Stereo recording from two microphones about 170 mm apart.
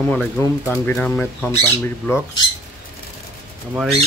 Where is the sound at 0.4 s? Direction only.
10° left (ahead or behind).